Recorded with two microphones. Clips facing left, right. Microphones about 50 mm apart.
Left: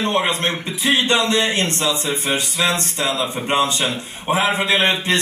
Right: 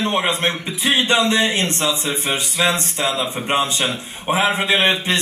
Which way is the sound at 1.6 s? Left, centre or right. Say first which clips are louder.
Even; centre.